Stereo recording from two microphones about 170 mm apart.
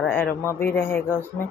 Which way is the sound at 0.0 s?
10° left (ahead or behind).